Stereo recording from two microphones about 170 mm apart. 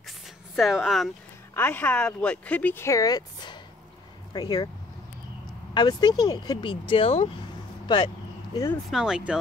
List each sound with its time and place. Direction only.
0.6 s speech: centre (ahead or behind)
1.5 s speech: 10° left (ahead or behind)
5.8 s speech: 25° left (ahead or behind)
8.9 s speech: 5° right (ahead or behind)